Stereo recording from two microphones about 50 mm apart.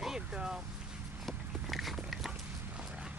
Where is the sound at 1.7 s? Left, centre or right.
Centre.